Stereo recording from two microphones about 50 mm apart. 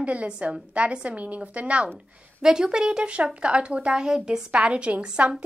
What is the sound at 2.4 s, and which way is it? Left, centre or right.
A woman's voice, centre.